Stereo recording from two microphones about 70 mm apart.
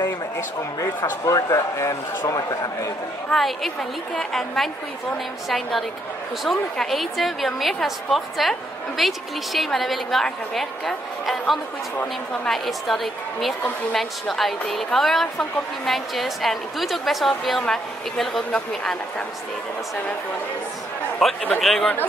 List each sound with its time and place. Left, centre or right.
1.2 s a man's voice: left
3.3 s speech: centre
21.2 s speech: centre